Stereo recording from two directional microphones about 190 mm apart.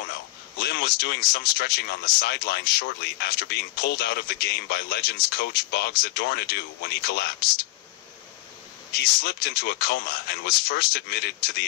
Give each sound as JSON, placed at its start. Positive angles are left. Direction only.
{"t": 0.6, "sound": "speech", "side_deg": 60}
{"t": 8.9, "sound": "speech", "side_deg": 60}